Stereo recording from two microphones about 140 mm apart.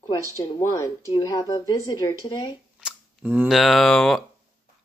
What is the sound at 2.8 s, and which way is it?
Camera, 10° right (ahead or behind).